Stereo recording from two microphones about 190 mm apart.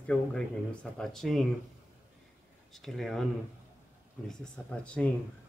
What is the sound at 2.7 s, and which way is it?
Speech, centre (ahead or behind).